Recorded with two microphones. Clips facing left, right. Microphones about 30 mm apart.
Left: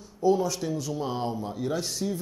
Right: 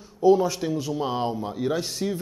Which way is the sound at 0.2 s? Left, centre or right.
Centre.